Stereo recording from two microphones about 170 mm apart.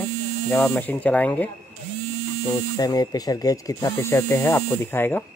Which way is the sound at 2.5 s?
20° left (ahead or behind).